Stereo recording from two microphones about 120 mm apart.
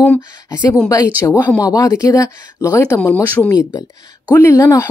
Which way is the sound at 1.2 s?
25° left (ahead or behind).